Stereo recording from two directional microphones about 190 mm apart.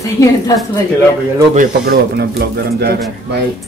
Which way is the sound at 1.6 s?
55° right (ahead or behind).